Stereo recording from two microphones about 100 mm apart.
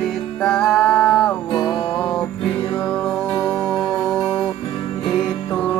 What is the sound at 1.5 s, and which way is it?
Music, 45° left (ahead or behind).